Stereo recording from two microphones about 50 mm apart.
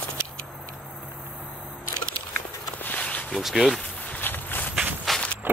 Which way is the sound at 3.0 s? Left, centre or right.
Left.